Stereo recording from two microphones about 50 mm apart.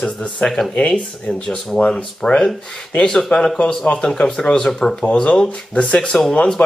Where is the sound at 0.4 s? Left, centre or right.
Left.